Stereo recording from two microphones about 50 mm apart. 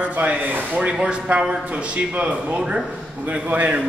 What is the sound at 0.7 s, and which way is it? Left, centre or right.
Speech, right.